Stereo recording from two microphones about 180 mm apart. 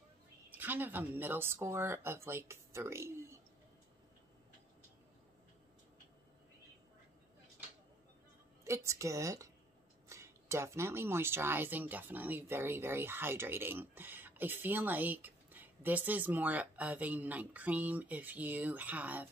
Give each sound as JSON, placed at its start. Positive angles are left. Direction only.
{"t": 0.5, "sound": "speech", "side_deg": -10}
{"t": 8.6, "sound": "speech", "side_deg": -15}